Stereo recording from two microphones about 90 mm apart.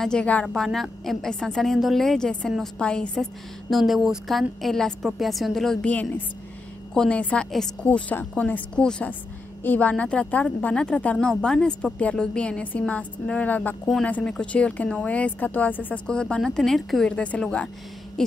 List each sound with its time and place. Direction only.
0.0 s a woman's voice: 10° left (ahead or behind)
0.5 s a woman's voice: centre (ahead or behind)
3.7 s a woman's voice: centre (ahead or behind)
5.9 s a woman's voice: 15° left (ahead or behind)
17.1 s a woman's voice: 15° left (ahead or behind)